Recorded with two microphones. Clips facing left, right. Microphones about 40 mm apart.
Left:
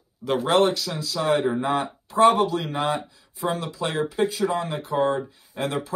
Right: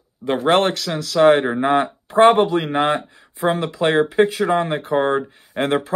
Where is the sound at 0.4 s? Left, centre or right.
Right.